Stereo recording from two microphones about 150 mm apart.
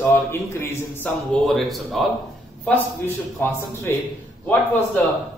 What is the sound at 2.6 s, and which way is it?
Speech, 10° left (ahead or behind).